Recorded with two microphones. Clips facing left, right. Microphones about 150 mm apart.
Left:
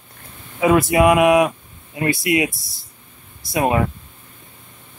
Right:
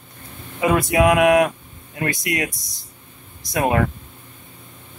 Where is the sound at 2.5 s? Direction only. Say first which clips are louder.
Even; 15° right (ahead or behind).